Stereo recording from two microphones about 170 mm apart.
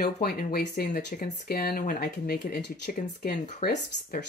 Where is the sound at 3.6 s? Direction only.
65° left (ahead or behind).